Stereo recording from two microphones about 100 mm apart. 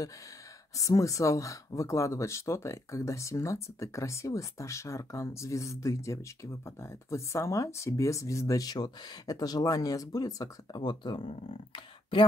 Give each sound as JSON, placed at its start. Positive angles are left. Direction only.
{"t": 0.7, "sound": "speech", "side_deg": 35}